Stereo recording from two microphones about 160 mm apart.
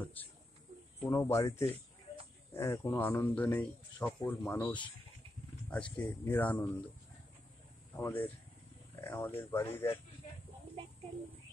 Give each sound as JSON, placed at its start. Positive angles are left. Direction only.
{"t": 1.0, "sound": "speech", "side_deg": 20}
{"t": 7.9, "sound": "speech", "side_deg": 10}